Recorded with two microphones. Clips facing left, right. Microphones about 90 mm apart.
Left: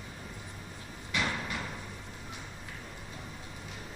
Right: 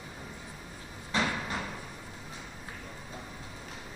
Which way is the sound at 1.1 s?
35° right (ahead or behind).